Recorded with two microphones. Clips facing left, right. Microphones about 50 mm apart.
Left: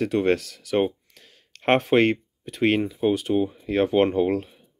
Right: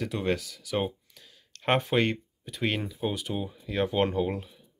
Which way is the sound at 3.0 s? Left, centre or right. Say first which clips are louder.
Left 9 dB; left.